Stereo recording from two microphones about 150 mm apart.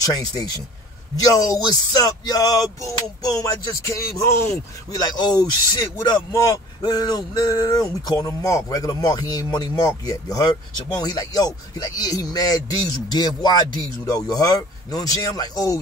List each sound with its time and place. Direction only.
0.0 s speech: 25° left (ahead or behind)